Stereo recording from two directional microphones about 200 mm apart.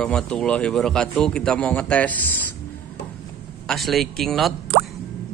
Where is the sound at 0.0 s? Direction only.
5° left (ahead or behind).